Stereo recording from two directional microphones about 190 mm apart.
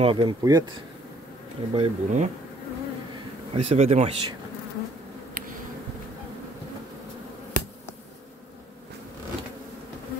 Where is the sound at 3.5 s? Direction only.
30° right (ahead or behind).